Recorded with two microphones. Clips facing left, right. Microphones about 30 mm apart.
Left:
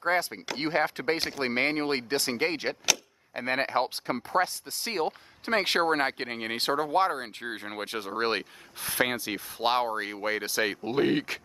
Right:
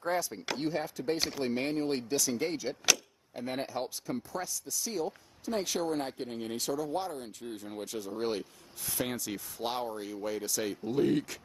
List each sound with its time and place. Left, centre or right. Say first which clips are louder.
0.0 s speech: left 5 dB; left